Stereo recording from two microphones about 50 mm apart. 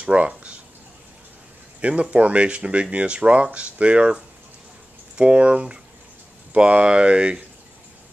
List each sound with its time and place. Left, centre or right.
0.0 s speech: right
1.8 s speech: right